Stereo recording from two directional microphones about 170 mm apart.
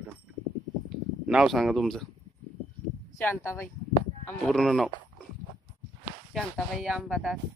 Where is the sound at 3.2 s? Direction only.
15° left (ahead or behind).